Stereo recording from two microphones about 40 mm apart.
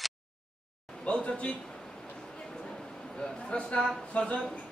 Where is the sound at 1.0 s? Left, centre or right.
Left.